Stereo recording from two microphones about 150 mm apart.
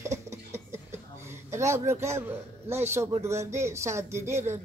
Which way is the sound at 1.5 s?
20° right (ahead or behind).